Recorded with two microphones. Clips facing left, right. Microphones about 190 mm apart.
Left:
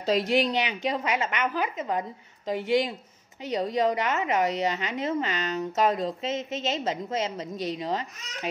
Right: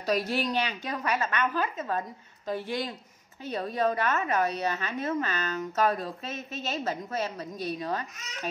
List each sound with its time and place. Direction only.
0.0 s a woman's voice: 20° left (ahead or behind)